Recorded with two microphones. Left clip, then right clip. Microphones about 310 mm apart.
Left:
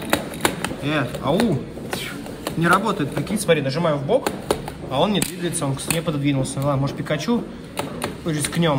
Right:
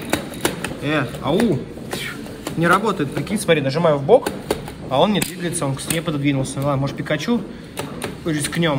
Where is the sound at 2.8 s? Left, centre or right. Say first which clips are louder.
Right 2 dB; centre.